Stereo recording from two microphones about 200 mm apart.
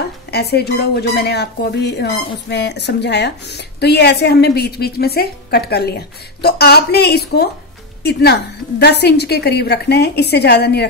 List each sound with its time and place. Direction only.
0.3 s a woman's voice: 55° left (ahead or behind)